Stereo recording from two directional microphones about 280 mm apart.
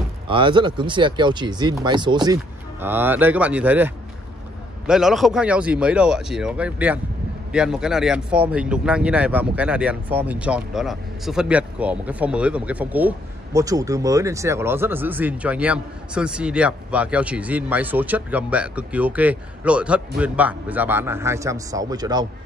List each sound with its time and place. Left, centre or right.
0.3 s speech: centre